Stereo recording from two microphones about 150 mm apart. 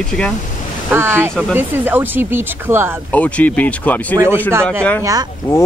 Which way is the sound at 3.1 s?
10° left (ahead or behind).